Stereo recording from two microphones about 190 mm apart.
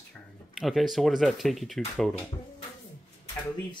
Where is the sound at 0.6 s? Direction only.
Centre (ahead or behind).